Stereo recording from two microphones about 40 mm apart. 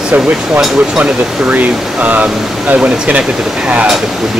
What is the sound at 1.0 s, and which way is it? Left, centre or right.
Speech, right.